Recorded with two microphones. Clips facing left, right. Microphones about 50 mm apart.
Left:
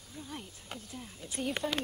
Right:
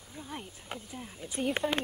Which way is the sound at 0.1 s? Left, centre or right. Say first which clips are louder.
Right 2 dB; centre.